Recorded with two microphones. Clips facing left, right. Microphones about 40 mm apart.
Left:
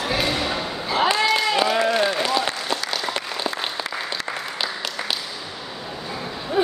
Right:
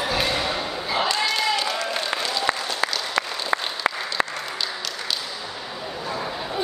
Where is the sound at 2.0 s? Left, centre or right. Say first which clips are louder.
Left 5 dB; centre.